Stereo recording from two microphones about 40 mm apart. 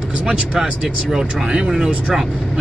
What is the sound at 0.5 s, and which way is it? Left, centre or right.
Speech, centre.